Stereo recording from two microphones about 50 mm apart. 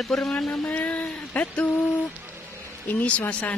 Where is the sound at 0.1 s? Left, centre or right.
Centre.